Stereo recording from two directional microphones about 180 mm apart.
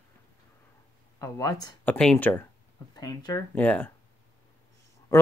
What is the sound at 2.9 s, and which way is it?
Speech, 20° left (ahead or behind).